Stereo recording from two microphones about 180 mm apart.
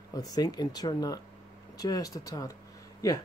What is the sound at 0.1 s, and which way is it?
Speech, 20° left (ahead or behind).